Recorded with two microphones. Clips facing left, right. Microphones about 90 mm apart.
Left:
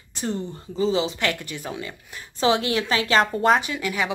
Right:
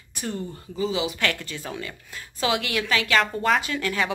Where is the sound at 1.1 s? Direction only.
20° left (ahead or behind).